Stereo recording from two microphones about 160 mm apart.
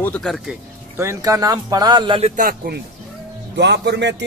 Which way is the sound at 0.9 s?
15° right (ahead or behind).